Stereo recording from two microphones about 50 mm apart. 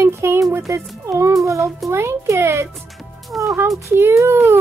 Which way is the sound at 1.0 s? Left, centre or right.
Right.